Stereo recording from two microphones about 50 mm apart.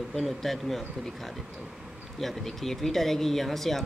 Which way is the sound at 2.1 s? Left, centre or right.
Centre.